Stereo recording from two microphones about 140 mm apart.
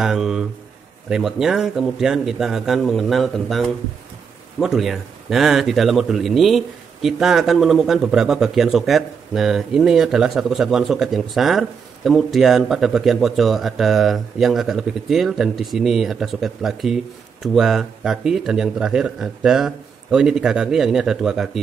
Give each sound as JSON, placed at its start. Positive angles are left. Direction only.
{"t": 0.0, "sound": "a man's voice", "side_deg": -5}